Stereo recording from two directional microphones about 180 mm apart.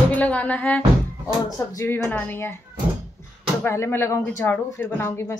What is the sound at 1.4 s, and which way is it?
Speech, 20° left (ahead or behind).